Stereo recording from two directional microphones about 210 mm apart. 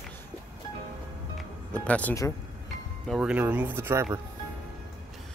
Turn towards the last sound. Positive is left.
turn(degrees=-10)  # may be behind; listen again after turning